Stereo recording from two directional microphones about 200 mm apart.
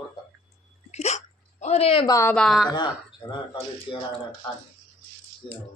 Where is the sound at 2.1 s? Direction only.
10° left (ahead or behind).